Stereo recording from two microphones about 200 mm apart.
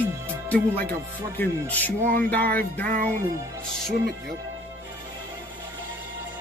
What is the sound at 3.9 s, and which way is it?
Speech, 50° right (ahead or behind).